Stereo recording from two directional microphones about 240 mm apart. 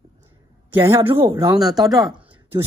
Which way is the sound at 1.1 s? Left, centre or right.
Centre.